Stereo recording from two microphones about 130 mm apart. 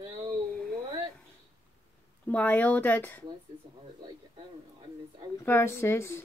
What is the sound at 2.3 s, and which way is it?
Speech, 10° left (ahead or behind).